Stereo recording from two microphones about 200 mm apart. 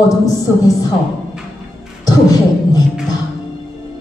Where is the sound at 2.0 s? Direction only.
20° left (ahead or behind).